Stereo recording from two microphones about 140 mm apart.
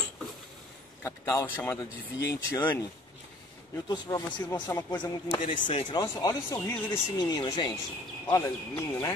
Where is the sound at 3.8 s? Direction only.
20° left (ahead or behind).